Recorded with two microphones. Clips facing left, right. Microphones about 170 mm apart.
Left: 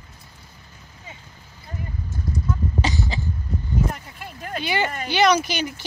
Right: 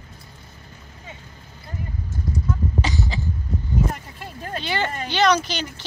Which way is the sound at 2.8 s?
20° left (ahead or behind).